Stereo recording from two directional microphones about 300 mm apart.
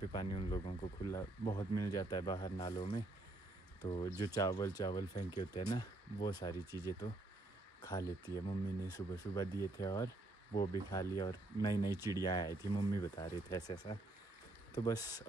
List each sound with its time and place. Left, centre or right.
0.1 s speech: centre
11.9 s speech: centre
12.2 s speech: centre